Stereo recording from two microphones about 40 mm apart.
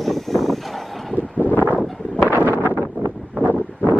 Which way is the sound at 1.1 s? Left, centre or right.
Left.